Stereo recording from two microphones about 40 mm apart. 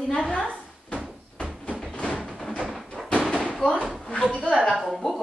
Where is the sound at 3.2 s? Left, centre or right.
Left.